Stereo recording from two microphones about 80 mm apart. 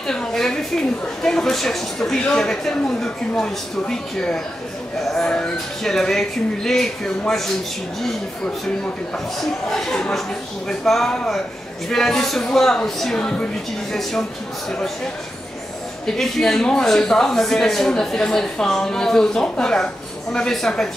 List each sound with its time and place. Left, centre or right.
0.0 s a woman's voice: centre
9.1 s a woman's voice: centre
16.2 s a woman's voice: centre